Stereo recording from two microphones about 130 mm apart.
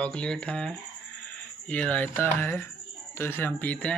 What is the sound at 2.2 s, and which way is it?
Speech, 15° left (ahead or behind).